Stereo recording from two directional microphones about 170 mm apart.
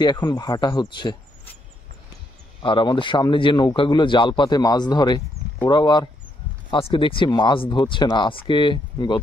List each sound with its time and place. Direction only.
0.0 s speech: 25° left (ahead or behind)
2.6 s speech: 30° left (ahead or behind)